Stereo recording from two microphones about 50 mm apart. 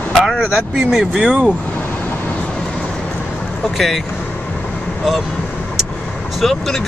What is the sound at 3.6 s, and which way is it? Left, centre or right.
Speech, centre.